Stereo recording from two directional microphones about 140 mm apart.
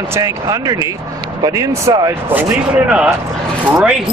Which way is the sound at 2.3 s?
10° right (ahead or behind).